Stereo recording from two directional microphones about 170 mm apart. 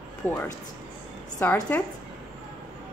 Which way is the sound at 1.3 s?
10° left (ahead or behind).